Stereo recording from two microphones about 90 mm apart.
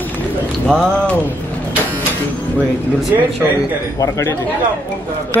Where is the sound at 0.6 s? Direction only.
10° left (ahead or behind).